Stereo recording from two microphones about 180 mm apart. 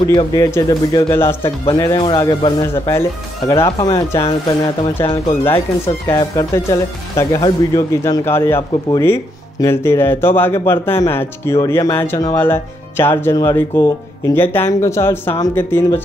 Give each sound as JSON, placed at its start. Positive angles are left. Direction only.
{"t": 0.0, "sound": "speech", "side_deg": 25}
{"t": 5.9, "sound": "speech", "side_deg": 20}